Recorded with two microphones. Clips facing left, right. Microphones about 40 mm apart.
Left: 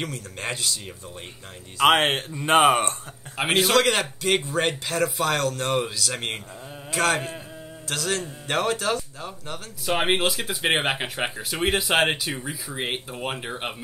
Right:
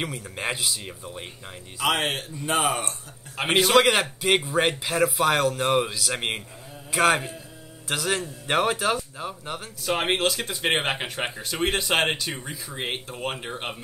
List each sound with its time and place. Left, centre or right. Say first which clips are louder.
0.0 s speech: right 1 dB; centre
1.8 s a man's voice: left 6 dB; left
3.4 s speech: left 1 dB; centre
3.7 s speech: right 2 dB; centre
6.9 s a sound: right 2 dB; centre
7.9 s speech: right 1 dB; centre
9.8 s speech: left 1 dB; centre